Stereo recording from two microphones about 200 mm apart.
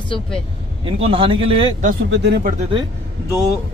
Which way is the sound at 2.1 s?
55° right (ahead or behind).